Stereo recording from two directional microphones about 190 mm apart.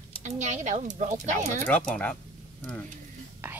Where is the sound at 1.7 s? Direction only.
5° left (ahead or behind).